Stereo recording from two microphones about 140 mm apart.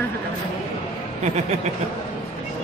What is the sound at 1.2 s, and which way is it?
Speech, 50° right (ahead or behind).